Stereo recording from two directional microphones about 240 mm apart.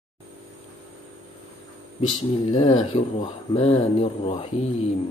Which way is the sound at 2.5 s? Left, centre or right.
Left.